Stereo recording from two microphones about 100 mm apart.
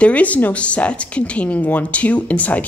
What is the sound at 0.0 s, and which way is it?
Speech, 15° left (ahead or behind).